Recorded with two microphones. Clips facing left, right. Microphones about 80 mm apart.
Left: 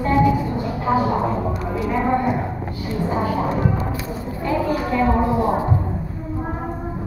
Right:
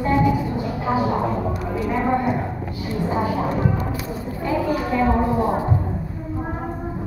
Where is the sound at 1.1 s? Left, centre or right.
Centre.